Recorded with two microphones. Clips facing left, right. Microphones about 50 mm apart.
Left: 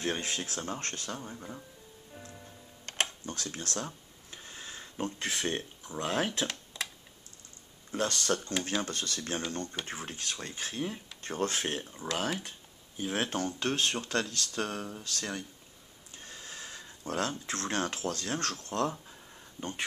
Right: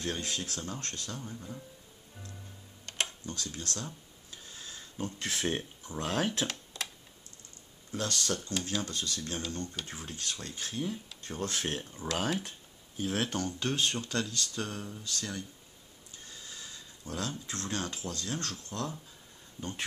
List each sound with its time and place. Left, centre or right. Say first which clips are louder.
0.0 s speech: left 2 dB; left
2.8 s a sound: left 2 dB; left
5.5 s speech: even; centre
7.9 s speech: left 3 dB; left
8.8 s speech: left 1 dB; left
11.7 s speech: even; centre
13.0 s speech: even; left
13.6 s speech: even; left